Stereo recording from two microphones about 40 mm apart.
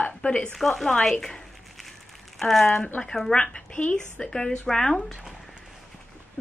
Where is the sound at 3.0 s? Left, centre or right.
Left.